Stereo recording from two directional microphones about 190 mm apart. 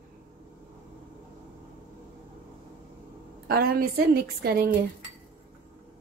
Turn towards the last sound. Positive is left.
turn(degrees=-55)  # may be behind; listen again after turning